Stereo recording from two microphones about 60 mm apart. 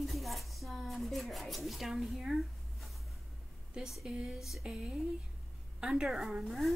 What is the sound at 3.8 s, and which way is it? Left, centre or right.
Speech, centre.